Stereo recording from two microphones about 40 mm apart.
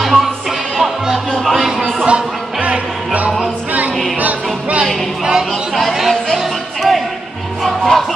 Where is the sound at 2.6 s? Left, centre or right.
Right.